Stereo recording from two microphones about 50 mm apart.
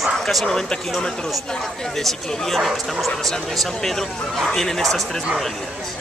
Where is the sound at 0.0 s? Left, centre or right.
Centre.